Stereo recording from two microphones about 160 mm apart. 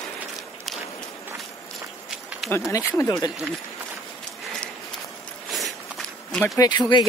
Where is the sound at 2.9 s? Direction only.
20° left (ahead or behind).